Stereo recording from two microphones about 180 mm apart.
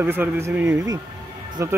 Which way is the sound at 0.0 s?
10° right (ahead or behind).